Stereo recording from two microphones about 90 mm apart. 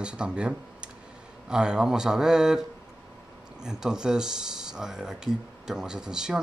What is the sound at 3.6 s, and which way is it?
Speech, 5° right (ahead or behind).